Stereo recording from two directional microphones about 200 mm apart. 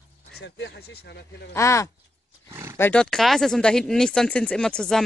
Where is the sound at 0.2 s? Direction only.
55° left (ahead or behind).